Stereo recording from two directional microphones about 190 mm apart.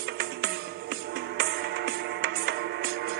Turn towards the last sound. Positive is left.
turn(degrees=-55)  # may be behind; listen again after turning